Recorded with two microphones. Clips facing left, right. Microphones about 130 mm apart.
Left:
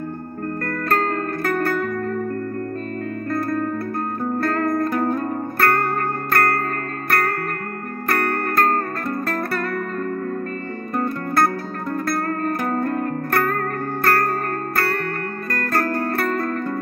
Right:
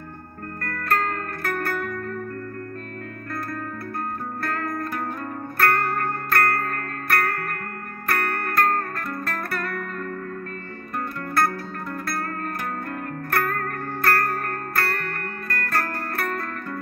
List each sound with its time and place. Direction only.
0.7 s music: 35° left (ahead or behind)
4.5 s music: 35° left (ahead or behind)
11.0 s music: 30° left (ahead or behind)
15.5 s music: 40° left (ahead or behind)